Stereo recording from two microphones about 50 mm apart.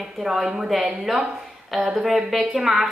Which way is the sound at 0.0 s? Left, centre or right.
Centre.